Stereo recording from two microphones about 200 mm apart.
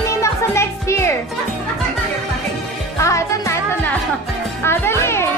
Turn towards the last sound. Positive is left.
turn(degrees=15)  # may be behind; listen again after turning